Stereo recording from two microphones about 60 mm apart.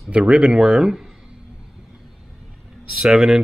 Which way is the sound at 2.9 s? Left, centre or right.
Centre.